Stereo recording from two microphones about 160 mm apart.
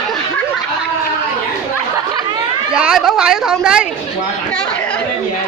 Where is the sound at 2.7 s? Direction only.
5° right (ahead or behind).